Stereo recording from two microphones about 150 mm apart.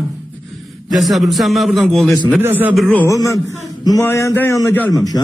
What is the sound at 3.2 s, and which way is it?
A man's voice, 25° left (ahead or behind).